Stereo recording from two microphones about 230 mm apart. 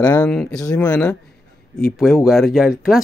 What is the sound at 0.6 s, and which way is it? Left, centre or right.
Speech, centre.